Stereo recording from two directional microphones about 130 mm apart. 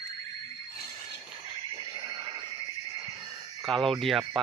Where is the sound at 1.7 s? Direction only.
30° right (ahead or behind).